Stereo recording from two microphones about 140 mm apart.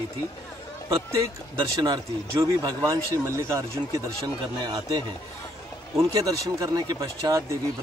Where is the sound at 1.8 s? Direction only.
25° right (ahead or behind).